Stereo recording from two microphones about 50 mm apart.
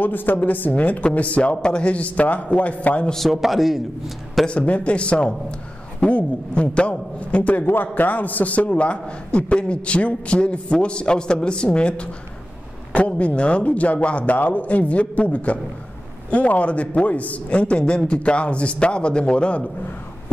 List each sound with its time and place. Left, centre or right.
0.0 s a man's voice: left
3.3 s a man's voice: centre
4.5 s a man's voice: left